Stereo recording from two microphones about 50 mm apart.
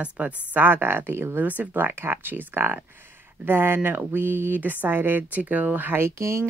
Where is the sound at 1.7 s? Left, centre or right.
Right.